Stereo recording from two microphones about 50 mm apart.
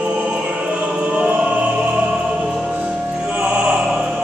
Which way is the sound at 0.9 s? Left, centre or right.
Right.